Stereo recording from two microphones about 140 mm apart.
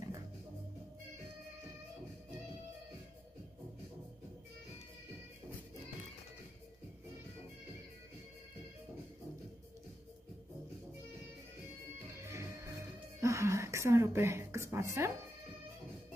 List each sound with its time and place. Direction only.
12.2 s music: 20° right (ahead or behind)
13.2 s a woman's voice: 20° right (ahead or behind)